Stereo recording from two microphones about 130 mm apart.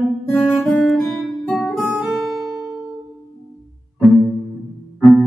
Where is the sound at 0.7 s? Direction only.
Centre (ahead or behind).